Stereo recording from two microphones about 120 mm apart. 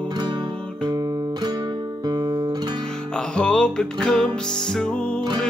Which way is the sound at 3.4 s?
10° left (ahead or behind).